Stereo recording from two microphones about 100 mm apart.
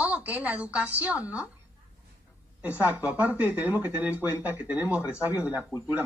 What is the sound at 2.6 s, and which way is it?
Speech, 15° right (ahead or behind).